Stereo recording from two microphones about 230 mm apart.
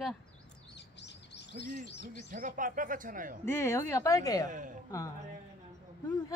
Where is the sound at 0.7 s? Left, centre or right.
Left.